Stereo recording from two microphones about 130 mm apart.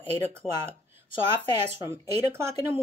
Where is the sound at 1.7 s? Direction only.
20° right (ahead or behind).